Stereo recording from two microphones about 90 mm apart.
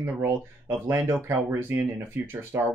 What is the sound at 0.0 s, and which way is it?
Speech, 25° right (ahead or behind).